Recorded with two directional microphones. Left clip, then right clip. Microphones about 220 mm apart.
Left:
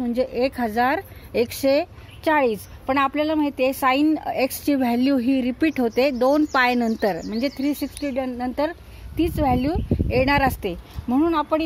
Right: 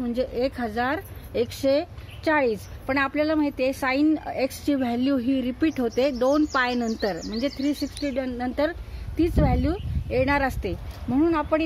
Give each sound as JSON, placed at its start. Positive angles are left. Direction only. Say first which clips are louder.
{"t": 0.0, "sound": "speech", "louder": "left 3 dB", "side_deg": 35}